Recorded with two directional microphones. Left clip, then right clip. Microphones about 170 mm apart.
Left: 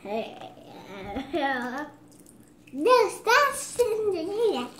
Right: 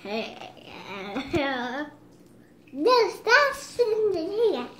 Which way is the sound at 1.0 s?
40° right (ahead or behind).